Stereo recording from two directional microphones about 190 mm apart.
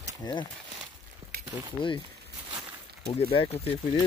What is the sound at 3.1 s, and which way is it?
Speech, 30° left (ahead or behind).